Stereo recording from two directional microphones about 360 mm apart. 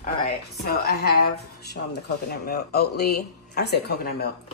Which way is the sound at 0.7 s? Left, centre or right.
Left.